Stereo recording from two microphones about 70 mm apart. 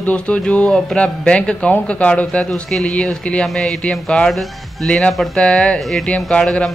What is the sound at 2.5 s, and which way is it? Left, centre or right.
Speech, centre.